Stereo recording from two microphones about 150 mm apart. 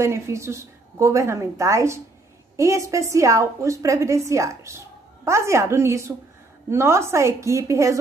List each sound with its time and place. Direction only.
0.0 s a woman's voice: 20° right (ahead or behind)